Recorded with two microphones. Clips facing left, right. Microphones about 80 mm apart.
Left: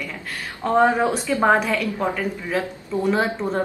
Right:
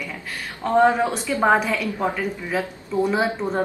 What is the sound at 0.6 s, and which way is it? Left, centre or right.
Speech, centre.